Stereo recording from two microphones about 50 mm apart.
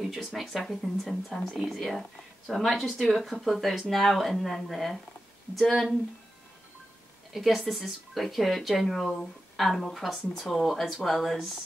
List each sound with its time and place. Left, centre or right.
0.0 s speech: centre
7.3 s speech: centre